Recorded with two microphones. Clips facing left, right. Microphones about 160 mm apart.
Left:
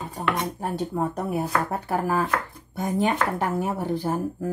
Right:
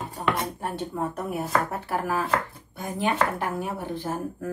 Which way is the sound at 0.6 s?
40° left (ahead or behind).